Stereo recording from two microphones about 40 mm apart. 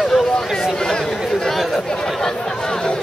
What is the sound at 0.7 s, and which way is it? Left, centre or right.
Chatter, centre.